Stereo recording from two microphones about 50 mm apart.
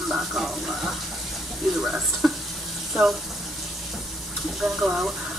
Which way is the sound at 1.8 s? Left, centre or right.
Centre.